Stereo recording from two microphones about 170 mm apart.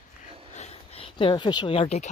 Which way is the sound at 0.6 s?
35° left (ahead or behind).